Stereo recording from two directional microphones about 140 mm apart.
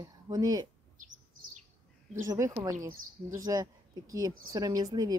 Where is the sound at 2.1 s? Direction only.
25° right (ahead or behind).